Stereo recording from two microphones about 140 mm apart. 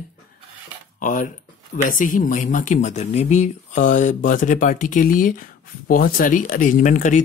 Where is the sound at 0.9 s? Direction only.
65° left (ahead or behind).